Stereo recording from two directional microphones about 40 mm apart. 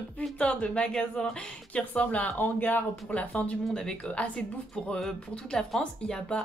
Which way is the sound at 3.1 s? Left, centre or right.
Left.